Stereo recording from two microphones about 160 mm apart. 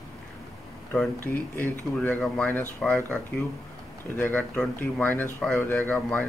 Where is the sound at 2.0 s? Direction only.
5° left (ahead or behind).